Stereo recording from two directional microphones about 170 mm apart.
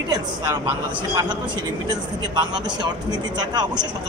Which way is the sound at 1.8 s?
25° right (ahead or behind).